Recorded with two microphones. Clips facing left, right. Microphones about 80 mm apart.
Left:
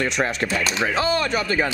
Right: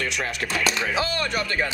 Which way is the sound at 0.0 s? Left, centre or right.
Left.